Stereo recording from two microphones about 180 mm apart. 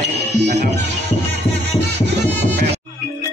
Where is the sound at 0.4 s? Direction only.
65° right (ahead or behind).